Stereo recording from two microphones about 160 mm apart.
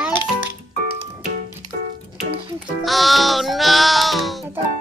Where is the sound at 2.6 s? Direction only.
Centre (ahead or behind).